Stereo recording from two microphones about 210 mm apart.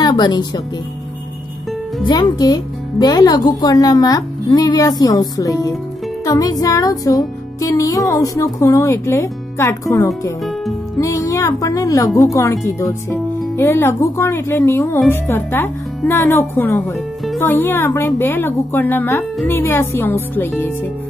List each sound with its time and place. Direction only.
0.0 s speech: 20° left (ahead or behind)
2.0 s speech: 20° left (ahead or behind)
6.2 s music: 15° left (ahead or behind)
8.1 s speech: 15° left (ahead or behind)
10.4 s music: centre (ahead or behind)
11.0 s speech: 15° left (ahead or behind)